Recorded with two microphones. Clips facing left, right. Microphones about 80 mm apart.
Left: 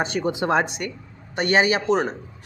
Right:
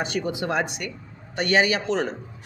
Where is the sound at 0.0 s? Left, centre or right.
Left.